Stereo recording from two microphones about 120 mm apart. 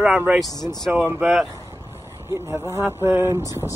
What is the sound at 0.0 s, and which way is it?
Speech, 10° right (ahead or behind).